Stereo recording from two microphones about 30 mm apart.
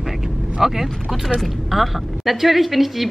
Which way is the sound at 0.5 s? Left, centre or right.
Centre.